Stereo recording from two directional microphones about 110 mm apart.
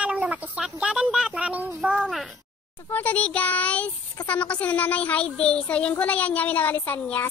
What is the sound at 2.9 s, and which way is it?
A child's voice, 15° left (ahead or behind).